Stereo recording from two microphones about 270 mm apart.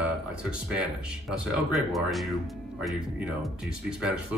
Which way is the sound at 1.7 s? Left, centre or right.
Centre.